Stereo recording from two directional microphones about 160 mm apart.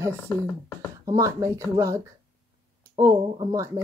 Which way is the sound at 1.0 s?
20° right (ahead or behind).